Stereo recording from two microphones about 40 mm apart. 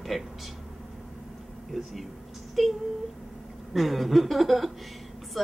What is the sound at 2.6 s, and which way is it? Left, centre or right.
A woman's voice, centre.